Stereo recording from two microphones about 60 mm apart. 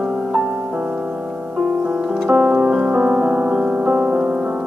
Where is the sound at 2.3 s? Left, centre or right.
Centre.